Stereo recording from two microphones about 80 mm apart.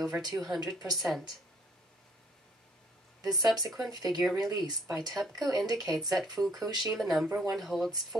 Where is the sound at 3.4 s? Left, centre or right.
Centre.